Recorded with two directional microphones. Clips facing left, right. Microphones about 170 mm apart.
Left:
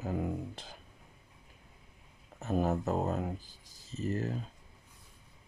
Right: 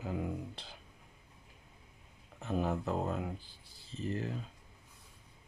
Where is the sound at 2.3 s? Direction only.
45° left (ahead or behind).